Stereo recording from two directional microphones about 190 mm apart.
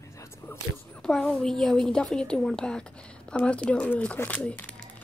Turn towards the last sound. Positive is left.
turn(degrees=5)  # may be behind; listen again after turning